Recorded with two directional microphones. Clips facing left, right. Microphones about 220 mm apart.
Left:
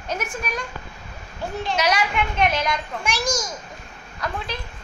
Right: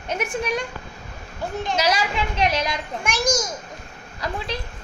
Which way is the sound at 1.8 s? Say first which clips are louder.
Left 2 dB; 30° right (ahead or behind).